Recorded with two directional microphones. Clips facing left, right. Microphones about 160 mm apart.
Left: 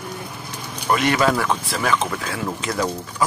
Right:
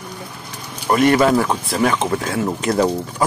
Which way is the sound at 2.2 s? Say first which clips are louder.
Right 6 dB; 45° right (ahead or behind).